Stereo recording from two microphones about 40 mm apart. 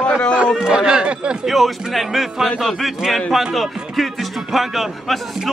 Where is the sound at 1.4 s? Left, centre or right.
Centre.